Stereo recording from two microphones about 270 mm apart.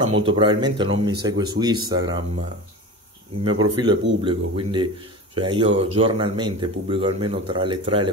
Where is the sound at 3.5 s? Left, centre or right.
Centre.